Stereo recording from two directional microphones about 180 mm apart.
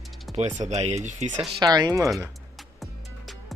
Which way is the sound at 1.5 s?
20° right (ahead or behind).